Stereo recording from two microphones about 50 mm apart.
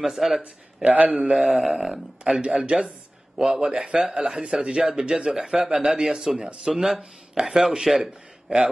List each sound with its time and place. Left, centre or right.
0.0 s speech: centre
0.8 s a man's voice: right
1.4 s a man's voice: centre
2.4 s a man's voice: right
3.3 s a man's voice: centre